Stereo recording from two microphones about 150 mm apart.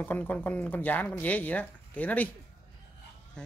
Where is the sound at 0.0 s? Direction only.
10° left (ahead or behind).